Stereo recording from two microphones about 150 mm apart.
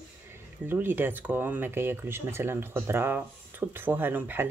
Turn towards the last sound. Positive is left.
turn(degrees=-15)  # may be behind; listen again after turning